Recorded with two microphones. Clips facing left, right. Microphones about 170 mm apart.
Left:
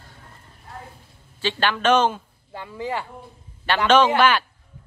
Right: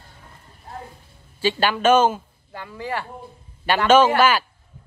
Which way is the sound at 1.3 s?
10° right (ahead or behind).